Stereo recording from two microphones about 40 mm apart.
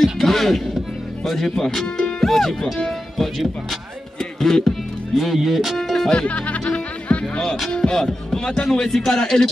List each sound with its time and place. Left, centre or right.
0.0 s speech: centre
4.2 s music: centre
5.1 s speech: centre
5.8 s music: centre
6.1 s music: left
8.6 s a man's voice: centre